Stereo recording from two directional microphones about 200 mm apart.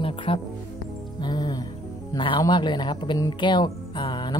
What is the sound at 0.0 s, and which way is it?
Music, 25° left (ahead or behind).